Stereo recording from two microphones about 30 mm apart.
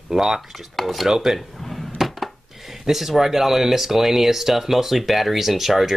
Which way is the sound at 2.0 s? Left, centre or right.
Centre.